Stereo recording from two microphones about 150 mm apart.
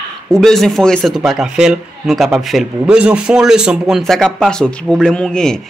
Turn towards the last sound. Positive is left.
turn(degrees=5)  # may be behind; listen again after turning